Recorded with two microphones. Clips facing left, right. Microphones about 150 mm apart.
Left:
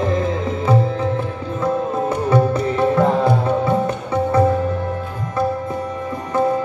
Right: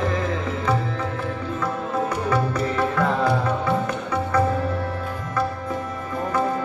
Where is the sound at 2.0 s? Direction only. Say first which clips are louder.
Left 7 dB; 25° left (ahead or behind).